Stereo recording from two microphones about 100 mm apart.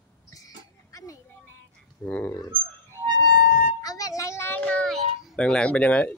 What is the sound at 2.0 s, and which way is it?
Speech, 15° left (ahead or behind).